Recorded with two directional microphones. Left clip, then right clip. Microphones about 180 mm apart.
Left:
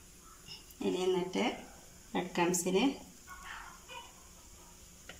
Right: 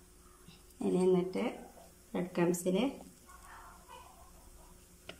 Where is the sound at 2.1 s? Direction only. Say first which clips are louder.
Left 1 dB; 5° right (ahead or behind).